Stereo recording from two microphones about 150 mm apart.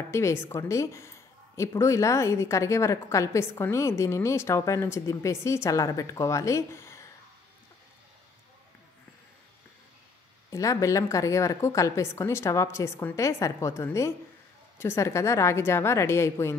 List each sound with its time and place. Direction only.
0.1 s a woman's voice: 20° left (ahead or behind)
10.5 s a woman's voice: 20° left (ahead or behind)